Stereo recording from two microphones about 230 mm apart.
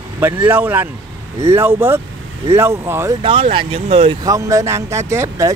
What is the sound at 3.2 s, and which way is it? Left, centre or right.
Speech, right.